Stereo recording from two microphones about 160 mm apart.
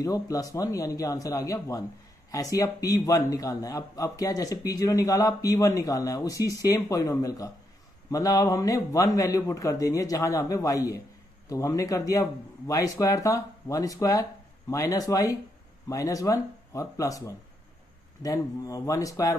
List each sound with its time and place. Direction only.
0.0 s a man's voice: 20° left (ahead or behind)